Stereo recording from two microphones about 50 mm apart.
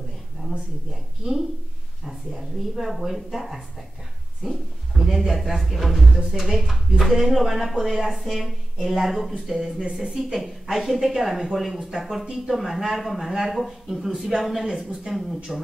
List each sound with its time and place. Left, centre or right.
1.2 s a woman's voice: centre
2.0 s a woman's voice: centre